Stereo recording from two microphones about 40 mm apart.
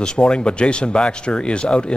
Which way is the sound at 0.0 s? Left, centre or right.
Left.